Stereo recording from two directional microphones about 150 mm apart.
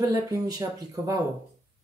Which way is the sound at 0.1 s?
25° right (ahead or behind).